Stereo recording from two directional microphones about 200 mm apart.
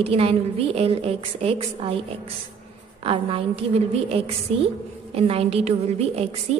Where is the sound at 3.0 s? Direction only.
25° right (ahead or behind).